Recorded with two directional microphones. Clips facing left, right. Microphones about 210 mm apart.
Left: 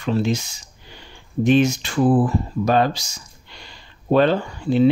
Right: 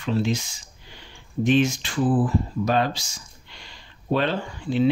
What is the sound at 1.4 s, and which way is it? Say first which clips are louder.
Speech: left 4 dB; 40° left (ahead or behind).